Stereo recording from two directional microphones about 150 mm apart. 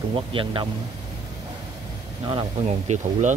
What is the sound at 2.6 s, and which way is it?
Speech, 50° right (ahead or behind).